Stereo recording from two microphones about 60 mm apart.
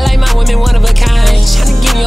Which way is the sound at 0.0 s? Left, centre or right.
Centre.